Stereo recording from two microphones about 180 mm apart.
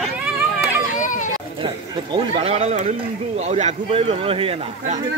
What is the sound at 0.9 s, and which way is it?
Children playing, 45° left (ahead or behind).